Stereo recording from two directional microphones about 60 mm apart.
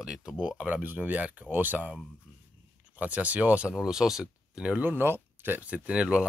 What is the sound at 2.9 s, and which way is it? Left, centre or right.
Speech, right.